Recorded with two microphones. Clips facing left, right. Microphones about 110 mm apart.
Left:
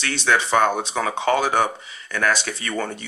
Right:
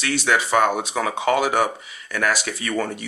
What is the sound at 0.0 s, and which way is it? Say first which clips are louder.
Speech: even; 30° left (ahead or behind).